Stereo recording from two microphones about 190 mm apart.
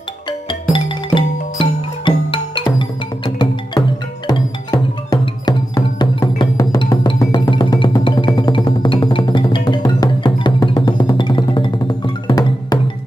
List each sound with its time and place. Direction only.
0.7 s music: 25° left (ahead or behind)